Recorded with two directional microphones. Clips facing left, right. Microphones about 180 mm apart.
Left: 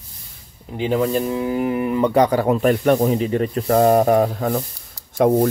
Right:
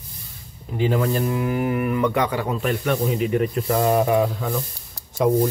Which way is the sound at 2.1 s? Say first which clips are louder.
Left 7 dB; 40° left (ahead or behind).